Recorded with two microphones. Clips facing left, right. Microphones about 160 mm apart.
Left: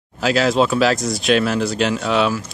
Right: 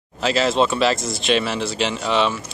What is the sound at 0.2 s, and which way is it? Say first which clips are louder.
Speech: left 2 dB; centre (ahead or behind).